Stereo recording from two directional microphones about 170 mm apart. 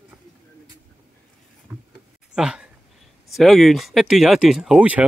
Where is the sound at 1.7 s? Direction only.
10° right (ahead or behind).